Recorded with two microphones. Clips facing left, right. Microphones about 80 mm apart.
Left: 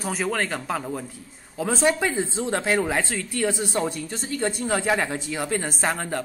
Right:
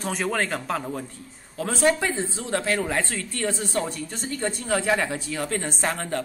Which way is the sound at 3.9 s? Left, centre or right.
Centre.